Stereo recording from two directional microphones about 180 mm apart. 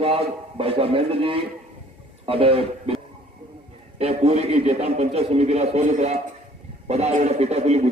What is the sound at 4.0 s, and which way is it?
A man's voice, 35° right (ahead or behind).